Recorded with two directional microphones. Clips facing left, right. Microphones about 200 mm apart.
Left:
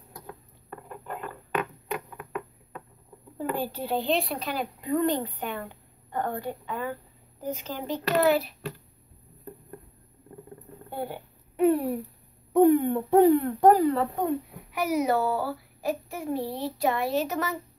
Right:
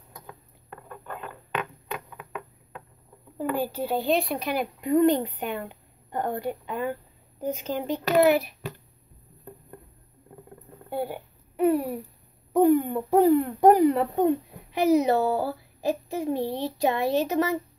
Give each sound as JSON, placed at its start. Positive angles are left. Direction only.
{"t": 3.3, "sound": "speech", "side_deg": -5}
{"t": 11.5, "sound": "a sound", "side_deg": 0}
{"t": 13.6, "sound": "speech", "side_deg": -15}